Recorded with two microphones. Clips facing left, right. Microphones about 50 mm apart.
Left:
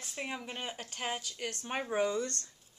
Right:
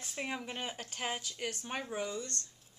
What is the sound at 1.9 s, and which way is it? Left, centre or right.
Speech, left.